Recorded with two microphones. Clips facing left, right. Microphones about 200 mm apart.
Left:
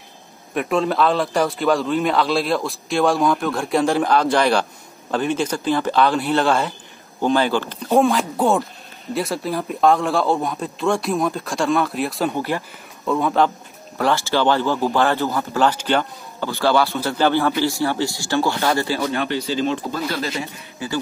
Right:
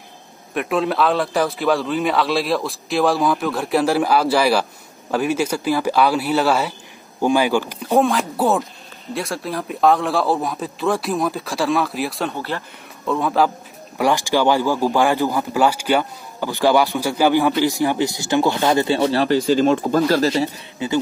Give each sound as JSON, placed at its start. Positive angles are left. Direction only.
{"t": 0.6, "sound": "speech", "side_deg": 0}
{"t": 8.0, "sound": "speech", "side_deg": 0}
{"t": 12.3, "sound": "speech", "side_deg": 10}
{"t": 13.0, "sound": "speech", "side_deg": 0}
{"t": 13.9, "sound": "speech", "side_deg": -15}
{"t": 20.8, "sound": "speech", "side_deg": -25}